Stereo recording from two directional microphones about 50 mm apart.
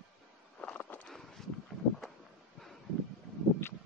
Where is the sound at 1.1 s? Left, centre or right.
Centre.